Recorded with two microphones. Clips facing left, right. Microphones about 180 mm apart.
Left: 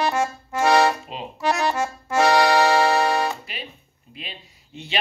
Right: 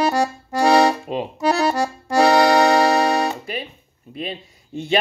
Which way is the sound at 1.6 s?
35° right (ahead or behind).